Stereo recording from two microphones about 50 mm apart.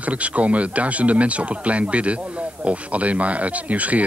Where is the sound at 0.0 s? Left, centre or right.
Right.